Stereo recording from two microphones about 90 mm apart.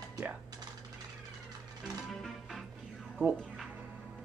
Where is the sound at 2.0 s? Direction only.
Centre (ahead or behind).